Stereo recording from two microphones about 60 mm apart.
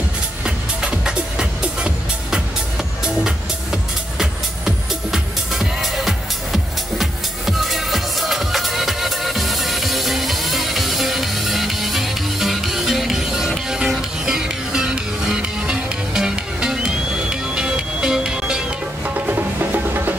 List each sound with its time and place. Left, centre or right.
0.8 s music: centre
19.0 s music: right